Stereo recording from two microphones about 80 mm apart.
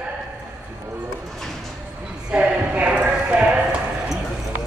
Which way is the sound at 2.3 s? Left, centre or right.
Centre.